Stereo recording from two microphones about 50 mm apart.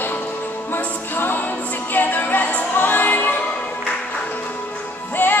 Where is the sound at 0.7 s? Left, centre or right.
Left.